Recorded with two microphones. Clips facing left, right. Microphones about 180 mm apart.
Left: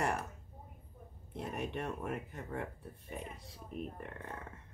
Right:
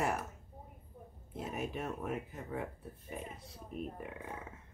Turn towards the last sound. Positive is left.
turn(degrees=-5)  # may be behind; listen again after turning